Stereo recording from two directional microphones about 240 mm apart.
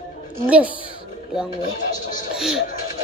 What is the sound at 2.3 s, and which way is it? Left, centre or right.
Speech, centre.